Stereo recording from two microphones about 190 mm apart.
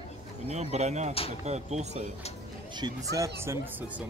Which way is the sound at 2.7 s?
20° right (ahead or behind).